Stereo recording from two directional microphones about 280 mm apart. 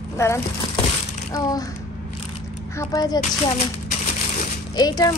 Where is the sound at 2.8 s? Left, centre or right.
Centre.